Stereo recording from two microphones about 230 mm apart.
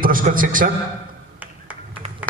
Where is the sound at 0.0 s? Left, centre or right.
Right.